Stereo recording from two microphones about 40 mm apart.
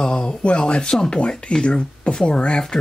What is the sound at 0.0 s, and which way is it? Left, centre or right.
Speech, left.